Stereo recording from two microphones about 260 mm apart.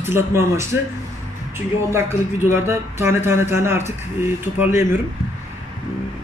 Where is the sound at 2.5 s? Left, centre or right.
Centre.